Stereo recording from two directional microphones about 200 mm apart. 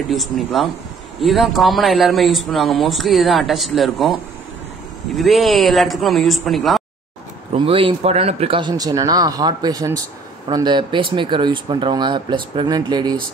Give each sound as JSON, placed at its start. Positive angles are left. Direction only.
{"t": 0.1, "sound": "a man's voice", "side_deg": 0}
{"t": 5.1, "sound": "a man's voice", "side_deg": 0}
{"t": 7.5, "sound": "speech", "side_deg": -25}